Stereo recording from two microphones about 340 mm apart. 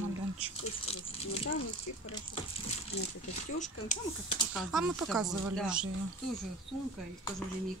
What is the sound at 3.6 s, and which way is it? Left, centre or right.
Speech, centre.